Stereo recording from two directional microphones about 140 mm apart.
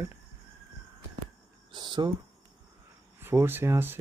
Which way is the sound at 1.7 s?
30° right (ahead or behind).